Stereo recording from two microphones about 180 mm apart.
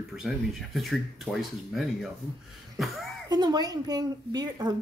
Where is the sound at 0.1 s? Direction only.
Centre (ahead or behind).